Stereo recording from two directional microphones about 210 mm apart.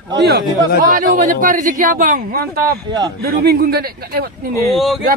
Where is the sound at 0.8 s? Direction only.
40° right (ahead or behind).